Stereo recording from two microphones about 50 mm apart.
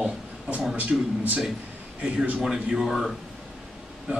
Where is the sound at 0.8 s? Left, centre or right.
Right.